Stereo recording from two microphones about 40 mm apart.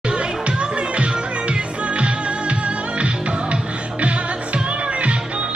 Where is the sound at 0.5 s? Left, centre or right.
Right.